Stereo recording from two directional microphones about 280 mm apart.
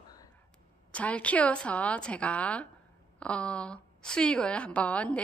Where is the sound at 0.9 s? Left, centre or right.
Centre.